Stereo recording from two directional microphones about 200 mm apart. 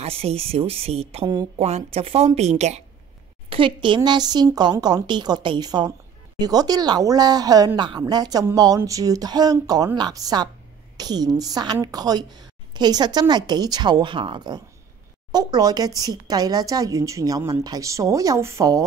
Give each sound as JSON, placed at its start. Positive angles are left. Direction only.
{"t": 0.0, "sound": "speech", "side_deg": -30}